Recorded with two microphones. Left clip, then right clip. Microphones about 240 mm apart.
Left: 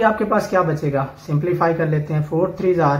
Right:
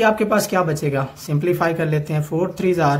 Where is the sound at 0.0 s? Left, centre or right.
Right.